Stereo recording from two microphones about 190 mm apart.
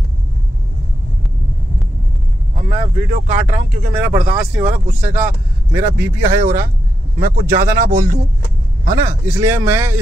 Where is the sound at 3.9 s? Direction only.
10° right (ahead or behind).